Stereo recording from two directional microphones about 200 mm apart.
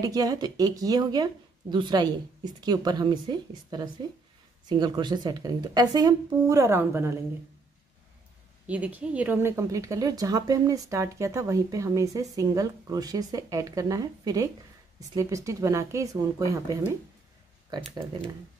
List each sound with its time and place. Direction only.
0.0 s speech: 15° right (ahead or behind)
8.6 s speech: 5° right (ahead or behind)